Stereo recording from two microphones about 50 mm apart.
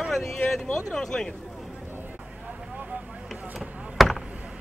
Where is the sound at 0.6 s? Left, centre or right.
Centre.